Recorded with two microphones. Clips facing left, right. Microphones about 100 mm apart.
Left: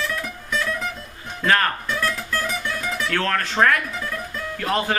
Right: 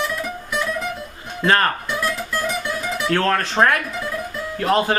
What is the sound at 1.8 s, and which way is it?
Music, 10° right (ahead or behind).